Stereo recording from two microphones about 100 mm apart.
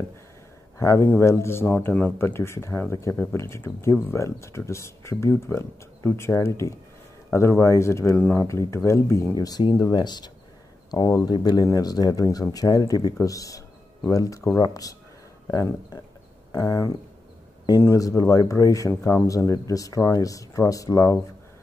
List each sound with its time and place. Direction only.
0.7 s speech: 30° left (ahead or behind)
8.2 s speech: 15° left (ahead or behind)
8.5 s speech: 30° left (ahead or behind); by 10.3 s 45° left (ahead or behind)
11.1 s speech: 35° left (ahead or behind)
11.3 s speech: 45° left (ahead or behind)
16.5 s speech: 30° left (ahead or behind)
17.9 s speech: 35° left (ahead or behind)